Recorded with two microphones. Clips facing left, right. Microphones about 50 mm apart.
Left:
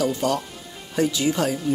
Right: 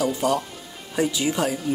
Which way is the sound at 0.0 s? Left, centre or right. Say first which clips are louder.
Even; centre.